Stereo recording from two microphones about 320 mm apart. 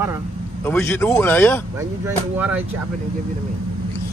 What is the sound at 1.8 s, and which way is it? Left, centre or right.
Speech, centre.